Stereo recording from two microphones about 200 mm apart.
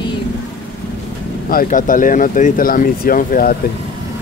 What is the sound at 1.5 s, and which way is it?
Speech, 45° left (ahead or behind).